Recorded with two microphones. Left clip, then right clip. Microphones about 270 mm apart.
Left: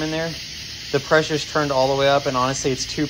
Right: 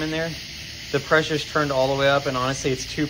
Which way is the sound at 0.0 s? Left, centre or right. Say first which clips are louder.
Left 2 dB; centre.